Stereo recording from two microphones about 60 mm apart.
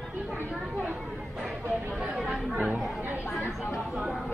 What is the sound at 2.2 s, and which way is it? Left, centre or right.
Chatter, centre.